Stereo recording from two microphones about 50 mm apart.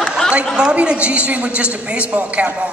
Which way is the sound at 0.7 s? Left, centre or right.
Right.